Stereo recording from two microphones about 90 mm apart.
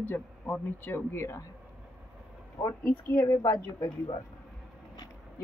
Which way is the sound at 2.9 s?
35° left (ahead or behind).